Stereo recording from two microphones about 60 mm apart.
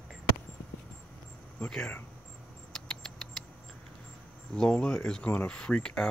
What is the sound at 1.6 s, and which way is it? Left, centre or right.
Speech, centre.